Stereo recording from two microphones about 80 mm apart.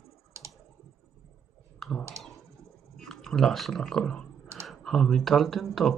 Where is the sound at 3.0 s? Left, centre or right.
Centre.